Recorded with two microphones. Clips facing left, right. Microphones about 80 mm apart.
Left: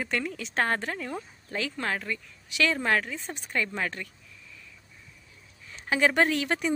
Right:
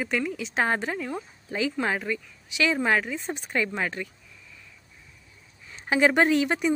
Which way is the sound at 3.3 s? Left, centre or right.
Centre.